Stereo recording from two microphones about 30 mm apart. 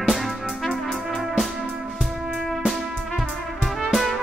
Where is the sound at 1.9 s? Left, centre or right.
Centre.